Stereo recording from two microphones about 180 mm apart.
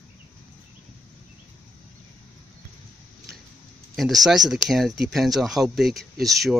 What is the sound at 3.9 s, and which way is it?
Speech, centre (ahead or behind).